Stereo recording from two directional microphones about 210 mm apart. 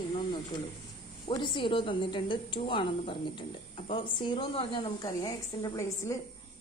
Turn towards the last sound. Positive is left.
turn(degrees=15)  # may be behind; listen again after turning